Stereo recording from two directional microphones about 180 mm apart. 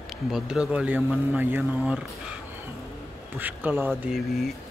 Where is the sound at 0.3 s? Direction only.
5° right (ahead or behind).